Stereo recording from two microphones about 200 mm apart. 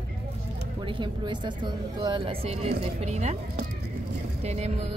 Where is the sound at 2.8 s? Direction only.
35° right (ahead or behind).